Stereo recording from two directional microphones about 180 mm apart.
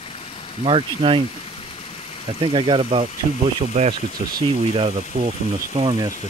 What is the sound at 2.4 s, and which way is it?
Speech, 25° right (ahead or behind).